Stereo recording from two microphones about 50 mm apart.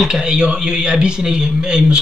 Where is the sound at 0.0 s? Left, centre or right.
Centre.